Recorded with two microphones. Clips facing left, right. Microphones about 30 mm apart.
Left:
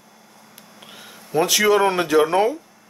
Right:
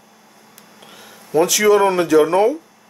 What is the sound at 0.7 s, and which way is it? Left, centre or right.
Speech, centre.